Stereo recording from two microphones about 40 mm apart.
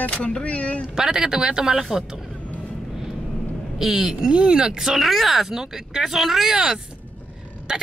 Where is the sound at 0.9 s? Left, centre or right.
Centre.